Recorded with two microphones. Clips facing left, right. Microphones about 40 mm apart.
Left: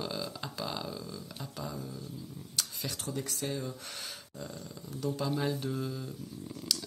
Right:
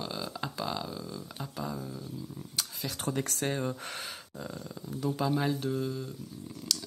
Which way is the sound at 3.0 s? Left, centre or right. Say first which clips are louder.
Right 6 dB; right.